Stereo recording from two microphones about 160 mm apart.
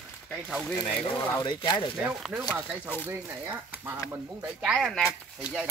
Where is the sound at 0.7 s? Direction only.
25° left (ahead or behind).